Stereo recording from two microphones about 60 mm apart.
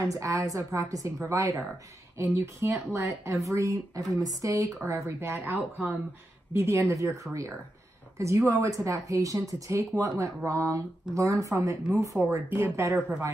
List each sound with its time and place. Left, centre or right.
0.1 s a woman's voice: right
2.1 s a woman's voice: right
4.1 s a woman's voice: right
4.8 s a woman's voice: right
5.3 s speech: right
6.5 s a woman's voice: right